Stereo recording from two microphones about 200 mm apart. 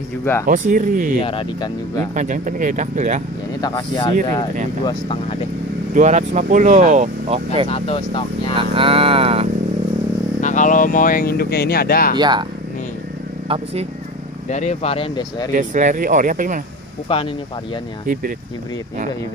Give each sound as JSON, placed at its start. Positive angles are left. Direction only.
{"t": 0.2, "sound": "speech", "side_deg": 10}
{"t": 0.5, "sound": "speech", "side_deg": -40}
{"t": 1.2, "sound": "speech", "side_deg": 25}
{"t": 2.1, "sound": "speech", "side_deg": -40}
{"t": 3.6, "sound": "speech", "side_deg": 20}
{"t": 5.9, "sound": "speech", "side_deg": -35}
{"t": 7.6, "sound": "speech", "side_deg": 30}
{"t": 8.5, "sound": "speech", "side_deg": -25}
{"t": 10.4, "sound": "speech", "side_deg": 40}
{"t": 12.2, "sound": "speech", "side_deg": -20}
{"t": 14.5, "sound": "speech", "side_deg": 35}
{"t": 15.5, "sound": "speech", "side_deg": -40}
{"t": 17.1, "sound": "speech", "side_deg": 25}
{"t": 18.0, "sound": "speech", "side_deg": -45}